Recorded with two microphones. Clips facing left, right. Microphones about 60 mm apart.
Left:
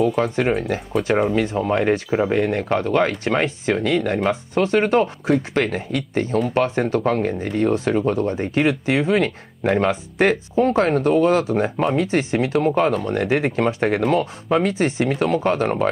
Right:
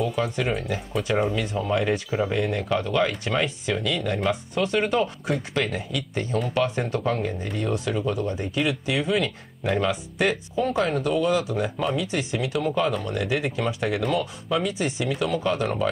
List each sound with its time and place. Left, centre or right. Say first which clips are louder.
0.0 s speech: left 6 dB; left
1.5 s speech: left 5 dB; left
2.4 s speech: left 5 dB; left